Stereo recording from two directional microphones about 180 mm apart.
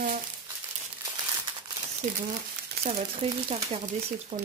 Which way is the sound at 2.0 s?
45° right (ahead or behind).